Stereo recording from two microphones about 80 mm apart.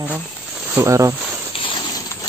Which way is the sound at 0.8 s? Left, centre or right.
Right.